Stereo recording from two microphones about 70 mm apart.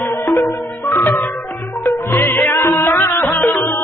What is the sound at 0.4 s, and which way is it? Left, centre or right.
Music, left.